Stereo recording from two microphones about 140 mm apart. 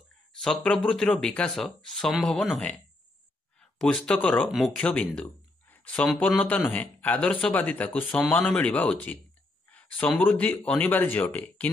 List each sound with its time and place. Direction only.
0.4 s speech: 5° left (ahead or behind)
3.7 s speech: 5° left (ahead or behind)